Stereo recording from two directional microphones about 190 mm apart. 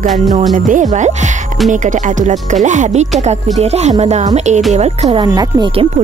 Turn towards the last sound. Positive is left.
turn(degrees=-25)  # may be behind; listen again after turning